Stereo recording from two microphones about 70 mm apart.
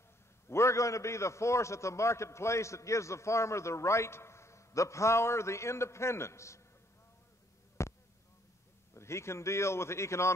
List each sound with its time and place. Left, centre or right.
0.5 s a man's voice: left
7.8 s a sound: left
8.9 s a man's voice: left